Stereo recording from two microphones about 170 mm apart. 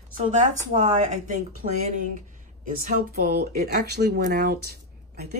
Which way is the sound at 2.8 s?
55° right (ahead or behind).